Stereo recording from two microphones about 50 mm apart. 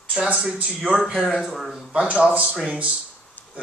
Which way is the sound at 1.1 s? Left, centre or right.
Centre.